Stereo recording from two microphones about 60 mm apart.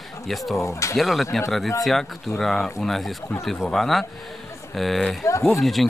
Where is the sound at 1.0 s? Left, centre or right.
Centre.